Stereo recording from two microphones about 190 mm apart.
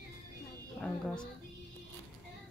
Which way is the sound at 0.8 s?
5° left (ahead or behind).